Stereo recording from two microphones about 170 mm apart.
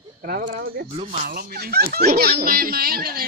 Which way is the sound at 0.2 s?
60° right (ahead or behind).